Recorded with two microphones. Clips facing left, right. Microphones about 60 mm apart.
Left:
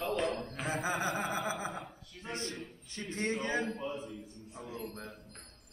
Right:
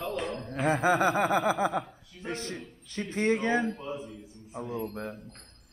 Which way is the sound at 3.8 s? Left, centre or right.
Centre.